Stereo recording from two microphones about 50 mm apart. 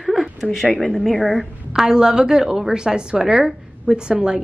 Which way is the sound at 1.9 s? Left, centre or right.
Centre.